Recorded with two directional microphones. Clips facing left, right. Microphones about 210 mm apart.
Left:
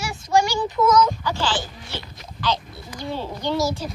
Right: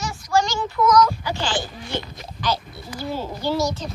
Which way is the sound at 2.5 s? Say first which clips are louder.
Right 1 dB; 5° right (ahead or behind).